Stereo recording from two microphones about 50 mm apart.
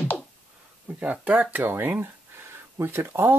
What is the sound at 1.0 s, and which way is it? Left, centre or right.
Speech, right.